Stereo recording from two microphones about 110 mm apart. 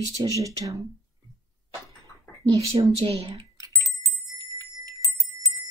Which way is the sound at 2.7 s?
60° right (ahead or behind).